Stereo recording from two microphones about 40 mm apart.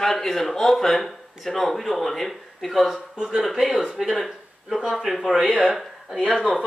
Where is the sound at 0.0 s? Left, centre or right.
Centre.